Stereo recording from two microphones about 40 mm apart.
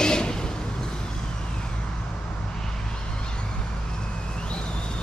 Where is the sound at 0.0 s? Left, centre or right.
Centre.